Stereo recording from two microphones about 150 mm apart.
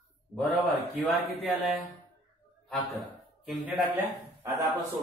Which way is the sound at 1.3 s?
Centre (ahead or behind).